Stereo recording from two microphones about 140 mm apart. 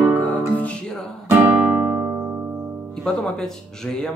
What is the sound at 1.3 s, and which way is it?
Guitar, 10° right (ahead or behind).